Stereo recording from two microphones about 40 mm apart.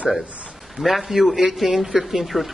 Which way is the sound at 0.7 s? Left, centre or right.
Centre.